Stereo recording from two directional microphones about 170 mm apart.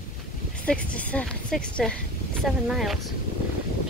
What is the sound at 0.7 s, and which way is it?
Speech, 10° left (ahead or behind).